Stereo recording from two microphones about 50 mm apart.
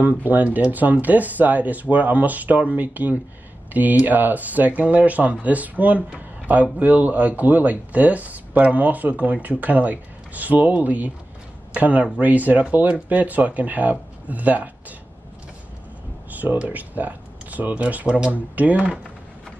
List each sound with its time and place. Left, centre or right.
0.0 s speech: right
16.3 s speech: right